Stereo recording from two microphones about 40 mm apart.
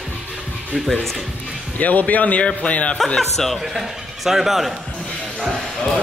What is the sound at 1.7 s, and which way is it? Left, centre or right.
Speech, left.